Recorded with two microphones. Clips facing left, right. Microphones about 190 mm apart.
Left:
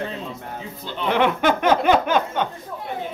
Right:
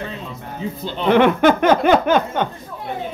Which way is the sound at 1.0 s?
50° right (ahead or behind).